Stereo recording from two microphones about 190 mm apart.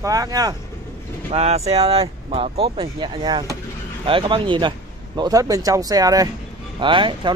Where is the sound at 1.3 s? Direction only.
35° right (ahead or behind).